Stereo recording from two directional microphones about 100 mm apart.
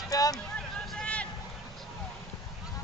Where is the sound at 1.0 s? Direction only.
10° left (ahead or behind).